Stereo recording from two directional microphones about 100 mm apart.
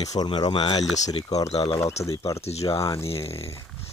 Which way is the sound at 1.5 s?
80° left.